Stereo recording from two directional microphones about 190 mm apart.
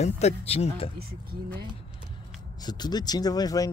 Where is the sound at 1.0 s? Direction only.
55° right (ahead or behind).